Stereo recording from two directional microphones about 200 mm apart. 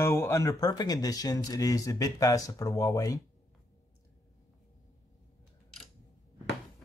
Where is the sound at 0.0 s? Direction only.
15° left (ahead or behind).